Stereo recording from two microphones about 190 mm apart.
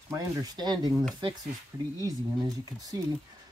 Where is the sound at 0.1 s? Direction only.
20° right (ahead or behind).